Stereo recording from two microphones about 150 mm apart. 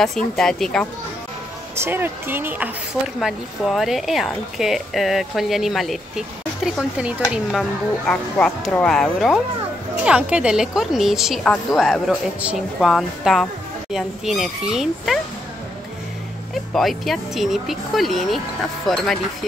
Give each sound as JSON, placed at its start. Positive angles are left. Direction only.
{"t": 0.0, "sound": "speech", "side_deg": 5}
{"t": 1.8, "sound": "speech", "side_deg": -15}
{"t": 3.2, "sound": "speech", "side_deg": 0}
{"t": 16.7, "sound": "speech", "side_deg": 0}